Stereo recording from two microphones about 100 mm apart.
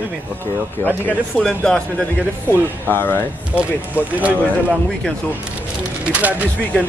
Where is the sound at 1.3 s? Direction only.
10° left (ahead or behind).